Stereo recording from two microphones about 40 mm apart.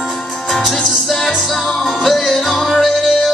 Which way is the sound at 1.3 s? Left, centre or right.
Centre.